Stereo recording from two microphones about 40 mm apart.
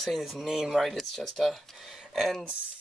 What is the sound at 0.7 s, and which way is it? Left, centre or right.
Speech, centre.